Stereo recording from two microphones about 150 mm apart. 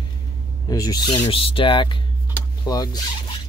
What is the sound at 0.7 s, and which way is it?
Speech, 25° left (ahead or behind).